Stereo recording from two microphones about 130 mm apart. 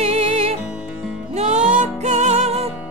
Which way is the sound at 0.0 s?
50° right (ahead or behind).